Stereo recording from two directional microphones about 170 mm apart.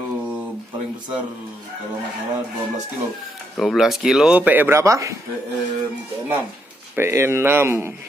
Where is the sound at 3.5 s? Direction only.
Centre (ahead or behind); by 5.1 s 20° right (ahead or behind).